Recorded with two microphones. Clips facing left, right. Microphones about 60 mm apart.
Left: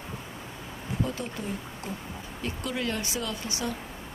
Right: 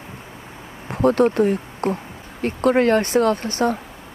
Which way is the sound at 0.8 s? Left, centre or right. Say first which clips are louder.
Right 16 dB; right.